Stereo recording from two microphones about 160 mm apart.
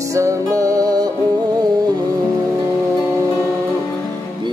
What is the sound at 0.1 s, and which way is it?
Music, 20° right (ahead or behind).